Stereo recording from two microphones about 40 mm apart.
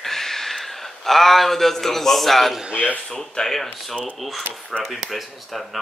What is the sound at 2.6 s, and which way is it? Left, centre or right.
Speech, right.